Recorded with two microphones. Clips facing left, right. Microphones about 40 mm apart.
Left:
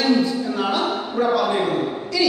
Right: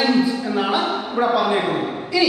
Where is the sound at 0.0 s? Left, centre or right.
Centre.